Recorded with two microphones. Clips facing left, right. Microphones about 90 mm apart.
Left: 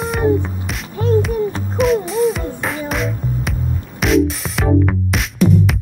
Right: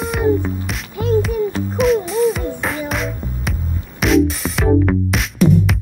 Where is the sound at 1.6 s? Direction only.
Centre (ahead or behind).